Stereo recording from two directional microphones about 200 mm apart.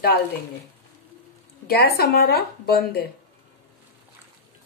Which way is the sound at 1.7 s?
50° left (ahead or behind).